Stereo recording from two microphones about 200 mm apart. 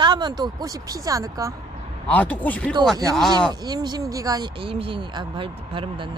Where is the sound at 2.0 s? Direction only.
5° left (ahead or behind).